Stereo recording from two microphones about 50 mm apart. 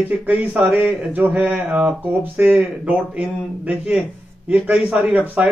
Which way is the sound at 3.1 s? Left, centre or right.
Right.